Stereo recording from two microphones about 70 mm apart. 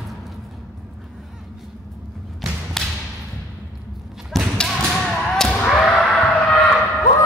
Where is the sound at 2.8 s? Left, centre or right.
Centre.